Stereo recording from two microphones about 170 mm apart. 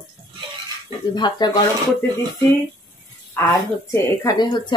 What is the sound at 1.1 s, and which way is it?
Speech, 25° left (ahead or behind).